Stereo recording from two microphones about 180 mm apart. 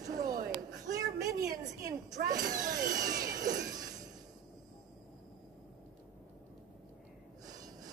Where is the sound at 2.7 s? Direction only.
20° right (ahead or behind).